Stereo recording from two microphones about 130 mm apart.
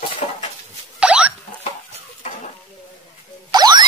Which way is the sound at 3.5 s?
35° right (ahead or behind).